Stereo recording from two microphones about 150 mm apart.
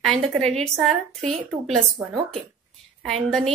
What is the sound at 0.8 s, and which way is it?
A woman's voice, centre (ahead or behind).